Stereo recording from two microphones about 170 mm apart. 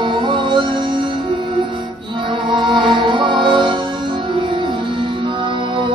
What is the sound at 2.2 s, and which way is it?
Music, 30° right (ahead or behind).